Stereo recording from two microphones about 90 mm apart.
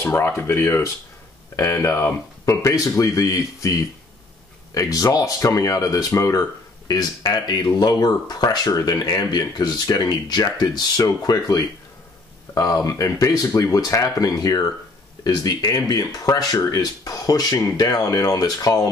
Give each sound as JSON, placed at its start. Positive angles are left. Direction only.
{"t": 0.0, "sound": "speech", "side_deg": 30}
{"t": 4.7, "sound": "speech", "side_deg": 40}